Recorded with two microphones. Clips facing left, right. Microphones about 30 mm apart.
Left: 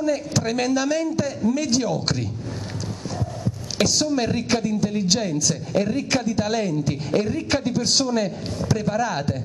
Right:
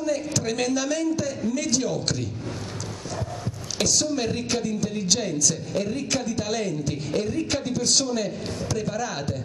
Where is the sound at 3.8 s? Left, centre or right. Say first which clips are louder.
Left 3 dB; centre.